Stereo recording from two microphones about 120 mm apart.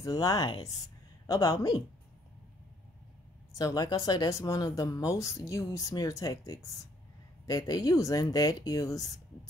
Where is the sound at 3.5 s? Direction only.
30° left (ahead or behind).